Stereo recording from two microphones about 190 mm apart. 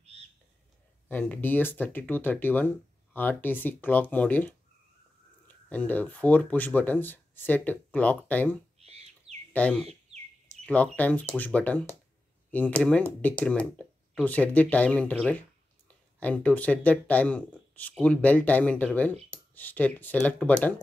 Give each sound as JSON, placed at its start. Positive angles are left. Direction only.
{"t": 1.0, "sound": "speech", "side_deg": 10}
{"t": 5.7, "sound": "speech", "side_deg": 10}
{"t": 8.8, "sound": "bird", "side_deg": -35}
{"t": 9.5, "sound": "speech", "side_deg": 5}
{"t": 10.6, "sound": "a sound", "side_deg": 5}
{"t": 11.0, "sound": "speech", "side_deg": 10}